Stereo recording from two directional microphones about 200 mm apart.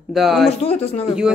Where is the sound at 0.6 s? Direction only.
30° left (ahead or behind).